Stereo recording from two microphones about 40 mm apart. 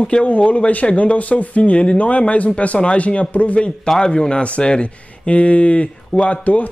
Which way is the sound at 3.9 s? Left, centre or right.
Left.